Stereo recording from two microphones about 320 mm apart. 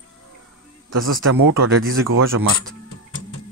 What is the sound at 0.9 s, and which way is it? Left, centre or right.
Speech, right.